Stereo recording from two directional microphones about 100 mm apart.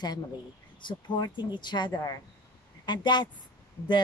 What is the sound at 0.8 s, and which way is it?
Speech, 50° left (ahead or behind).